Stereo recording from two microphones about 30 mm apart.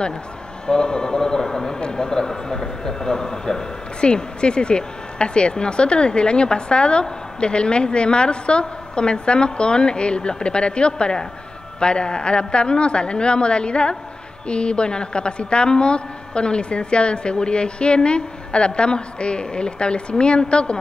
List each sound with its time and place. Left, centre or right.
0.7 s a man's voice: left
4.0 s speech: left